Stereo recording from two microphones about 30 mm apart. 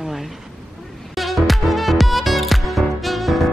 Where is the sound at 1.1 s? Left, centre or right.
Centre.